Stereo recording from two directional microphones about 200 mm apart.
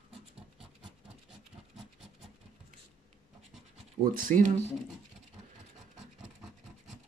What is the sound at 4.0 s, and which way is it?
Speech, 45° right (ahead or behind).